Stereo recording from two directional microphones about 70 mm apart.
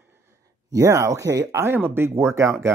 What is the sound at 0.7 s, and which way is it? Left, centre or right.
Speech, right.